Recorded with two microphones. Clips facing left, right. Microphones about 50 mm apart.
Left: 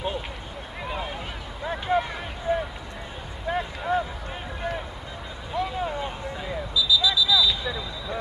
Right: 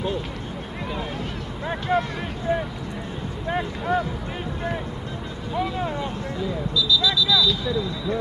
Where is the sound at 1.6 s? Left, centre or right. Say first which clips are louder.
Right 1 dB; centre.